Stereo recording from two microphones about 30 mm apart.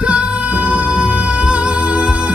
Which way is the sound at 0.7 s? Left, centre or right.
Right.